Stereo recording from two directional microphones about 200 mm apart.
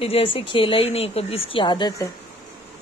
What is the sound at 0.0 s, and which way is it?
Speech, 25° left (ahead or behind).